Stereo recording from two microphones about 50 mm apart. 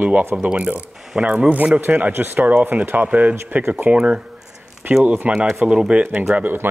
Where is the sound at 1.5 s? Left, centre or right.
Right.